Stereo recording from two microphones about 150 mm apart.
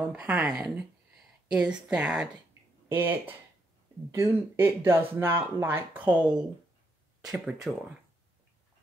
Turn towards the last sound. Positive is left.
turn(degrees=-5)  # may be behind; listen again after turning